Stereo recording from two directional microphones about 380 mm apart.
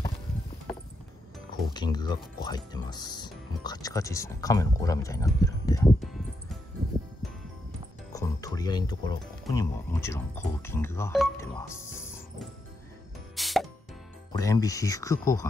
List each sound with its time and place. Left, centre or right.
1.5 s speech: centre
8.1 s speech: centre
13.4 s plop: centre
14.3 s speech: centre